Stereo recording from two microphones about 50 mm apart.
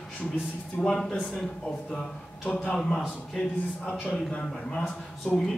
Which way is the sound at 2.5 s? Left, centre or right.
Left.